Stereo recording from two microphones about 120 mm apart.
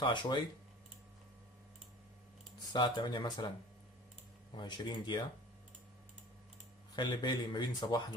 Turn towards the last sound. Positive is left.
turn(degrees=40)  # may be behind; listen again after turning